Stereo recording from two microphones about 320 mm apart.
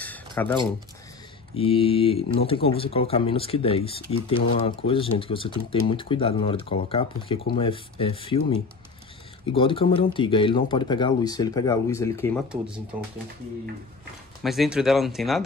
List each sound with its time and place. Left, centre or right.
0.0 s a sound: centre
1.5 s speech: centre
12.4 s speech: centre
14.4 s speech: centre